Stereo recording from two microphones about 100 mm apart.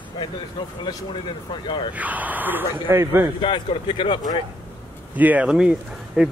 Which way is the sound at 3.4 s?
55° left (ahead or behind).